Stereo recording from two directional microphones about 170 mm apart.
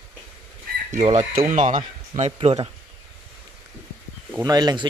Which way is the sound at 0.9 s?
45° right (ahead or behind).